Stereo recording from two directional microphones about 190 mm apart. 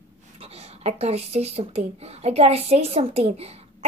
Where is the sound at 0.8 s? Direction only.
35° right (ahead or behind).